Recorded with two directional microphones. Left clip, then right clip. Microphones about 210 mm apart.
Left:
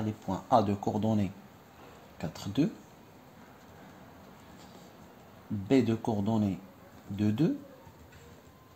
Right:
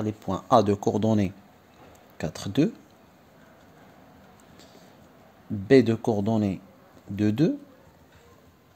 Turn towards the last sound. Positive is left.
turn(degrees=-50)  # may be behind; listen again after turning